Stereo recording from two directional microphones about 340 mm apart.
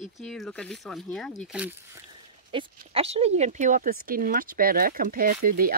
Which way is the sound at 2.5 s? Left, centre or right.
Centre.